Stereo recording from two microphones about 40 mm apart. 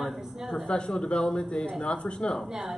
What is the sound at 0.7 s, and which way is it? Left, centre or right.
Speech, left.